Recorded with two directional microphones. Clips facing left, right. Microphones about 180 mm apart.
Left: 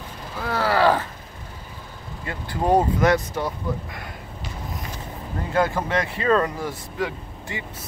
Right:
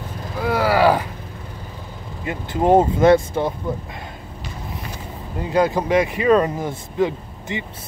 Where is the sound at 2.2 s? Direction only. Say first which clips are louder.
Right 5 dB; 20° right (ahead or behind).